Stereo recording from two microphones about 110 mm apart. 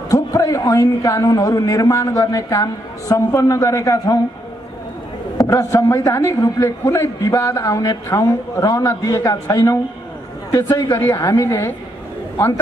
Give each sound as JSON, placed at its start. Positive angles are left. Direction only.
{"t": 0.1, "sound": "a man's voice", "side_deg": 30}
{"t": 5.4, "sound": "a man's voice", "side_deg": 30}